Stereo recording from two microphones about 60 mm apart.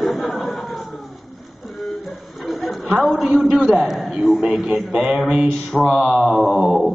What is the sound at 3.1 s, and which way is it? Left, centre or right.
Speech, centre.